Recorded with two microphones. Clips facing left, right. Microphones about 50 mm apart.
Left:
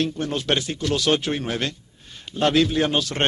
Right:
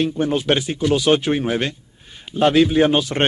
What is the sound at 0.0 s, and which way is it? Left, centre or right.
Speech, centre.